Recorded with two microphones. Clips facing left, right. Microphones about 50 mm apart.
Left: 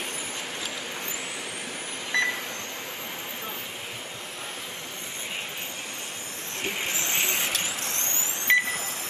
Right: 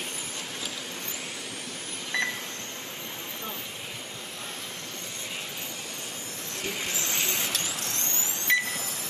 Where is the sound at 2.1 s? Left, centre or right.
Centre.